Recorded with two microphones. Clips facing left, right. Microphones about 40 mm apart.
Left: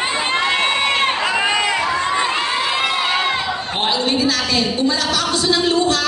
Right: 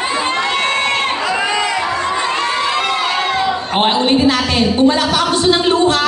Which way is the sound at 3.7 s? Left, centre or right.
Right.